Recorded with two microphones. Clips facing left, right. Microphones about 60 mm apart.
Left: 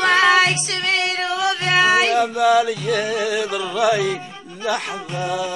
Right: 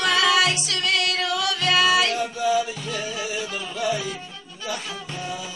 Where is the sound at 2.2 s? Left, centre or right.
Left.